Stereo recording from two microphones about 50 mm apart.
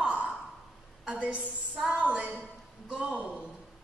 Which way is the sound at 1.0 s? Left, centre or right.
Right.